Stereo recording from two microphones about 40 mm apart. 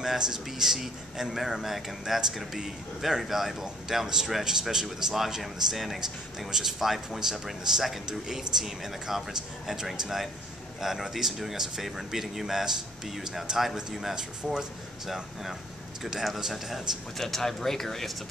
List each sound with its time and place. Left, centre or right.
0.0 s a man's voice: centre
14.1 s a man's voice: centre
16.0 s a man's voice: centre
17.2 s speech: centre